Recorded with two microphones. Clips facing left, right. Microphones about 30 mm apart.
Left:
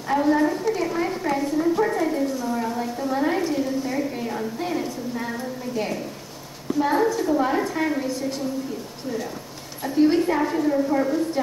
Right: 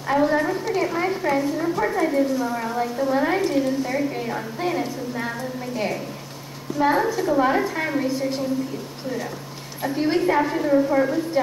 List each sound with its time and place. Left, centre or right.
0.0 s a woman's voice: centre
9.8 s a woman's voice: centre